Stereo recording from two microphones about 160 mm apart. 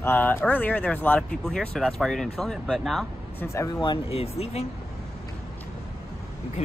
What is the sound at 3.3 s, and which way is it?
Speech, 20° left (ahead or behind).